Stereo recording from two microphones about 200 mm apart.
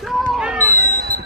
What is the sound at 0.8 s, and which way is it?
Music, 50° right (ahead or behind).